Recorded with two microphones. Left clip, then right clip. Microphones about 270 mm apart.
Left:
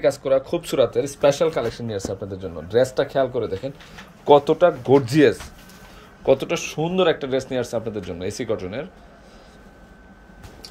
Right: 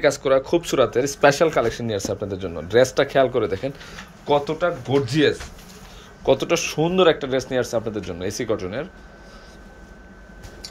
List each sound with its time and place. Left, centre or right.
0.0 s speech: centre
4.3 s speech: left
6.2 s speech: centre